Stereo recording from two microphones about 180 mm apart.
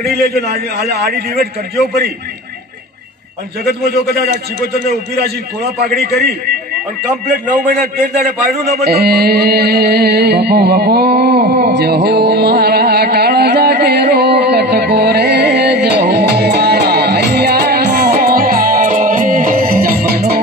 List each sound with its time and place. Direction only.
0.3 s music: 60° right (ahead or behind)
3.6 s music: 60° right (ahead or behind)
5.9 s music: 60° right (ahead or behind)
8.5 s a man's voice: 40° right (ahead or behind)
8.8 s music: 60° right (ahead or behind)